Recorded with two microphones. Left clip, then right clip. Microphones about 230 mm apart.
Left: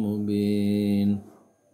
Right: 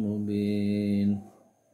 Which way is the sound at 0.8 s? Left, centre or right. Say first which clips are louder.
Left 3 dB; centre.